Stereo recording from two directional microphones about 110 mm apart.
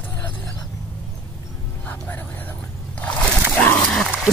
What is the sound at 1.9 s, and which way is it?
Music, 15° left (ahead or behind).